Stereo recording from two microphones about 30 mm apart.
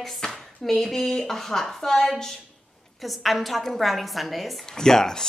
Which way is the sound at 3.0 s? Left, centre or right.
Centre.